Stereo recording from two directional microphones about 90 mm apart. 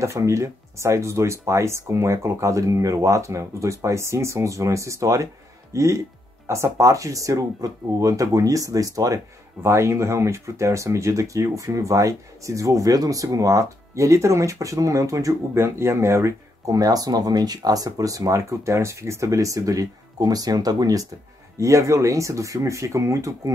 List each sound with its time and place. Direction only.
0.0 s speech: 35° right (ahead or behind)